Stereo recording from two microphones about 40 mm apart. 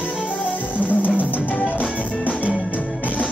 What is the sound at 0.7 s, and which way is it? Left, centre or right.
Music, left.